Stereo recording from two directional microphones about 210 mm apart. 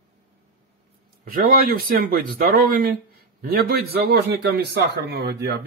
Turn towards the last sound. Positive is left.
turn(degrees=-50)  # may be behind; listen again after turning